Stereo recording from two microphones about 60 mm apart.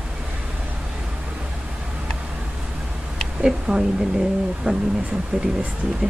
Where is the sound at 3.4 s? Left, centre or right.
Centre.